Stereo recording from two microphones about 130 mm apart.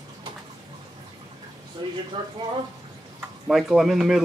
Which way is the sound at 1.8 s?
35° right (ahead or behind).